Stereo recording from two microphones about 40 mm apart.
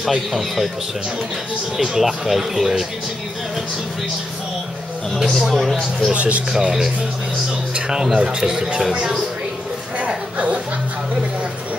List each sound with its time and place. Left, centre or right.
0.0 s speech: centre
1.8 s speech: centre
5.1 s speech: centre
6.1 s speech: right
6.5 s speech: centre
9.9 s a sound: right